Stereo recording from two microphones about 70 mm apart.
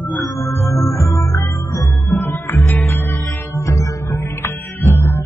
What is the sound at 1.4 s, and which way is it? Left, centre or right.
Music, left.